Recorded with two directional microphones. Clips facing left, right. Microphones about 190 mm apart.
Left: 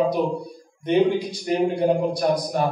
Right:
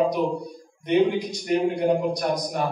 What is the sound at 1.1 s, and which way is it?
A man's voice, 30° left (ahead or behind).